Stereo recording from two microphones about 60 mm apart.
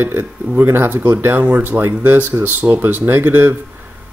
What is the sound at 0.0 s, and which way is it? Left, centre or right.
Speech, right.